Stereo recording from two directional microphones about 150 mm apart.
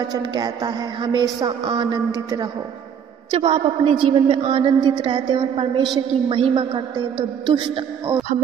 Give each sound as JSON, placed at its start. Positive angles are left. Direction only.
{"t": 0.1, "sound": "a woman's voice", "side_deg": -25}
{"t": 3.3, "sound": "speech", "side_deg": -40}